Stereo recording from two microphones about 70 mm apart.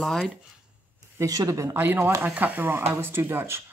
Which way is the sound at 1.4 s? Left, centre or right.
Right.